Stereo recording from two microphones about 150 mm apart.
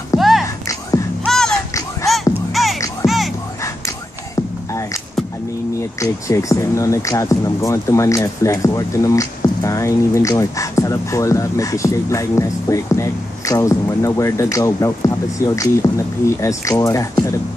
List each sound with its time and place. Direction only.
0.1 s a sound: 20° left (ahead or behind)
1.2 s music: 5° left (ahead or behind)
3.0 s music: 20° left (ahead or behind)
5.8 s speech: 20° left (ahead or behind)